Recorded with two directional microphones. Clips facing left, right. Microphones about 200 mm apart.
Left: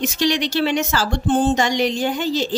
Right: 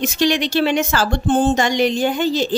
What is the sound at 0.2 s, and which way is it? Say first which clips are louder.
A woman's voice: right 3 dB; 55° right (ahead or behind).